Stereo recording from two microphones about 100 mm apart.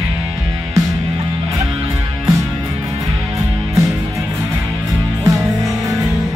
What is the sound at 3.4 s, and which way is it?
Music, 35° right (ahead or behind).